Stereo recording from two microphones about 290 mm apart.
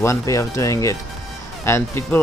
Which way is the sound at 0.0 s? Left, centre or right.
Centre.